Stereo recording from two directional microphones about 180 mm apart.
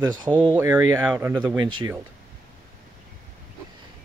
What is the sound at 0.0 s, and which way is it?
Speech, 20° right (ahead or behind).